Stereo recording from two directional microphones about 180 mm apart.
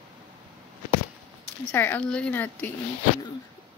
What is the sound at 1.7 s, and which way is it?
Speech, 10° left (ahead or behind).